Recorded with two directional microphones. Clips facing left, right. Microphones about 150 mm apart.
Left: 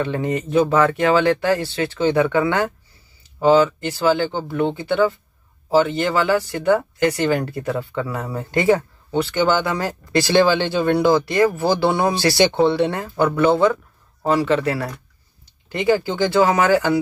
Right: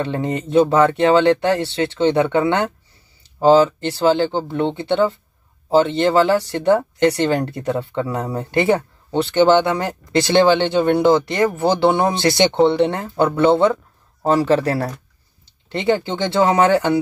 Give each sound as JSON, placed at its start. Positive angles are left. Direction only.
{"t": 0.0, "sound": "speech", "side_deg": -25}
{"t": 15.7, "sound": "speech", "side_deg": -25}